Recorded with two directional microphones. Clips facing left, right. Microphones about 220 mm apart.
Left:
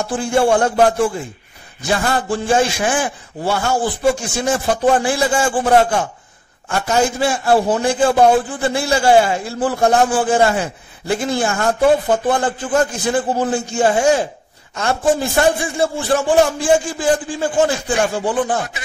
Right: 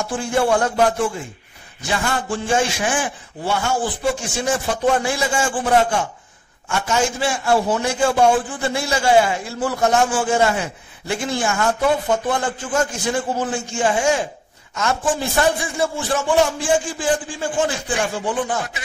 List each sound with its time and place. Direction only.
0.0 s a man's voice: 30° left (ahead or behind)